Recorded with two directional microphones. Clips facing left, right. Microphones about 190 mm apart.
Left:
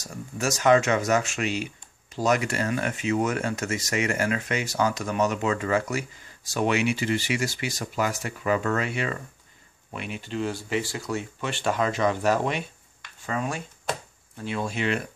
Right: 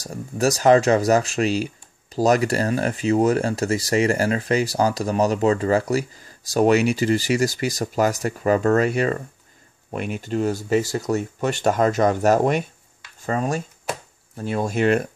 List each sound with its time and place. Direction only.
0.0 s speech: 35° right (ahead or behind)